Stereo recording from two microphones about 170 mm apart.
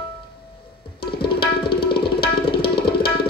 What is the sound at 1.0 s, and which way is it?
Tabla, 65° left (ahead or behind).